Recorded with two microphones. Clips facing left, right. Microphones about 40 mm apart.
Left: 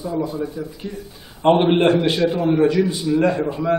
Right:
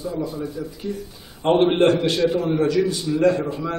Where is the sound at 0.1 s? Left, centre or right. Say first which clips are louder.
Left 3 dB; centre.